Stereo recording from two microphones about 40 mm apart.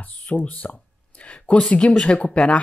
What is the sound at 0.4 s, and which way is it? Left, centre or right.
Speech, left.